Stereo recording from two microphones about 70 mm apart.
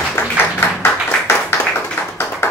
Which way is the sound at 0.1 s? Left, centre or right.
Left.